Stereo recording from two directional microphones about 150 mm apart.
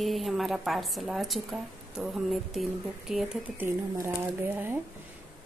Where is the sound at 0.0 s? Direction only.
Centre (ahead or behind).